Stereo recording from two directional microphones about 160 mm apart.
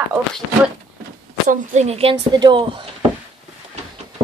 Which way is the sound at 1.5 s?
50° right (ahead or behind).